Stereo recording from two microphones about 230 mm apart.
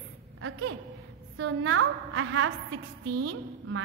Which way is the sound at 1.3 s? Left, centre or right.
Right.